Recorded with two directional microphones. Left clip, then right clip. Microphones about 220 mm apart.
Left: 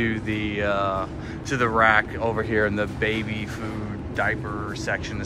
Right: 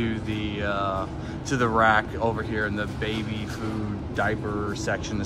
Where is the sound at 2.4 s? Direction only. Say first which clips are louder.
Left 5 dB; centre (ahead or behind).